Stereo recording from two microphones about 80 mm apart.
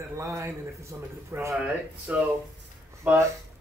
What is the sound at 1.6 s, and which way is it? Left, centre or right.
A man's voice, centre.